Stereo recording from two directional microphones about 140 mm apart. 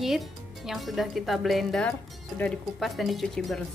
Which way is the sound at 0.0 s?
Centre (ahead or behind).